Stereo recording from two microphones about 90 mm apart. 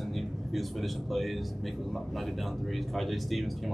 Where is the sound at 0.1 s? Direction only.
Centre (ahead or behind).